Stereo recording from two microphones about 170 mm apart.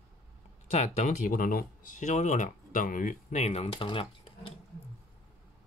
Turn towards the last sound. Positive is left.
turn(degrees=30)  # may be behind; listen again after turning